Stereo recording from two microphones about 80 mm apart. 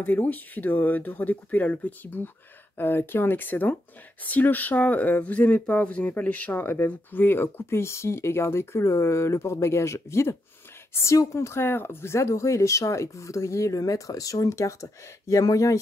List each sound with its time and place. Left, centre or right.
0.0 s speech: left